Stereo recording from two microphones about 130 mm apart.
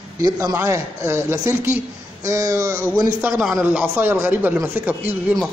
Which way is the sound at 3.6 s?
20° right (ahead or behind).